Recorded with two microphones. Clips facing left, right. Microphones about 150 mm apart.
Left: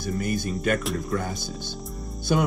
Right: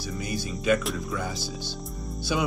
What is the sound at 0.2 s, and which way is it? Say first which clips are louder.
Music: left 4 dB; 50° left (ahead or behind).